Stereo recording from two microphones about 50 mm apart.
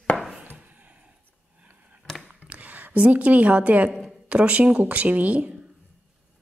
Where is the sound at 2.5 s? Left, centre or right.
Right.